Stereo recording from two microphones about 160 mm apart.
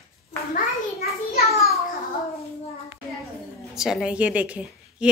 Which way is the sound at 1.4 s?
40° left (ahead or behind).